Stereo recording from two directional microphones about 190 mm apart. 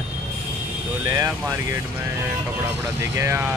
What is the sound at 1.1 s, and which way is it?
Speech, 15° right (ahead or behind).